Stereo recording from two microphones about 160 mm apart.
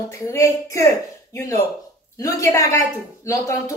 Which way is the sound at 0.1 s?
20° left (ahead or behind).